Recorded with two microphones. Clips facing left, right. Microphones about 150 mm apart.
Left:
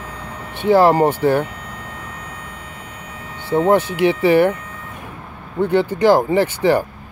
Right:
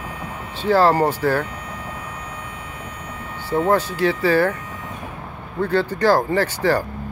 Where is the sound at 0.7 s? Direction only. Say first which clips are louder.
Left 3 dB; 15° left (ahead or behind).